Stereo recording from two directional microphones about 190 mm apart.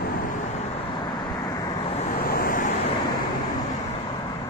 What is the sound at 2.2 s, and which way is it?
Vehicle, 50° left (ahead or behind).